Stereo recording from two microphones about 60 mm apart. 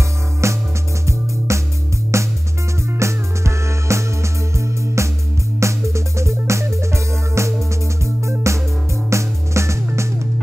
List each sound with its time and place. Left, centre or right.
0.4 s music: right